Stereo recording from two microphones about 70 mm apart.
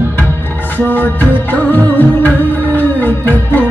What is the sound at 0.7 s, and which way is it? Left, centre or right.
Music, left.